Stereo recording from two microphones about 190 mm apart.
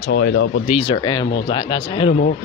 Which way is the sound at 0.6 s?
35° left (ahead or behind).